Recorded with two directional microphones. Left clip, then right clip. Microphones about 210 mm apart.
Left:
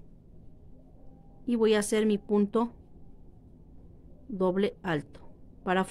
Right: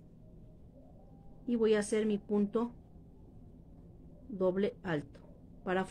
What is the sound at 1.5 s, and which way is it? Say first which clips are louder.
A woman's voice: left 5 dB; 40° left (ahead or behind).